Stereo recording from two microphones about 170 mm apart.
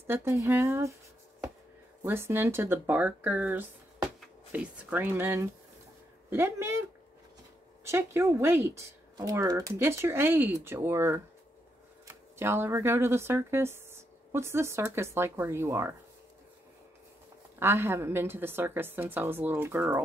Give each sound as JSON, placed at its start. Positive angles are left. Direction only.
{"t": 0.0, "sound": "speech", "side_deg": -15}
{"t": 2.0, "sound": "speech", "side_deg": -15}
{"t": 17.6, "sound": "speech", "side_deg": -15}